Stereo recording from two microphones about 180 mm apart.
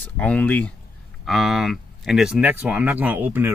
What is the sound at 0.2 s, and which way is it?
Speech, 5° left (ahead or behind).